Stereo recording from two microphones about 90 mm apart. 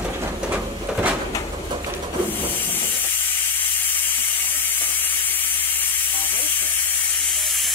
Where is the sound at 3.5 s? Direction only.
20° left (ahead or behind).